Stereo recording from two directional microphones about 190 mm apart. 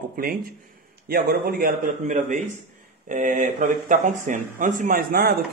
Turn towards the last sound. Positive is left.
turn(degrees=-50)  # may be behind; listen again after turning